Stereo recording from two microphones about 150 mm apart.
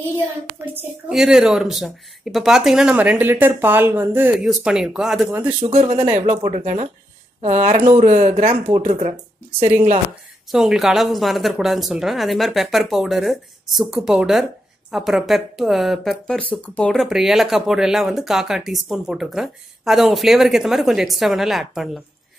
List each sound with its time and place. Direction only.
1.0 s speech: 5° right (ahead or behind)
4.5 s speech: centre (ahead or behind)
5.7 s speech: 50° right (ahead or behind)
8.7 s speech: 45° right (ahead or behind)
10.5 s speech: centre (ahead or behind)